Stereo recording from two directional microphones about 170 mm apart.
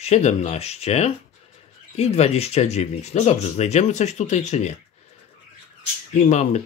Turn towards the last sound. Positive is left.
turn(degrees=45)  # may be behind; listen again after turning